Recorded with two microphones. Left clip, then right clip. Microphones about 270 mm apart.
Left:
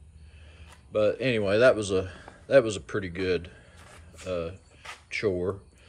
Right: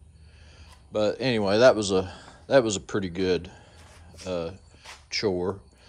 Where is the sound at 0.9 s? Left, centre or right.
Centre.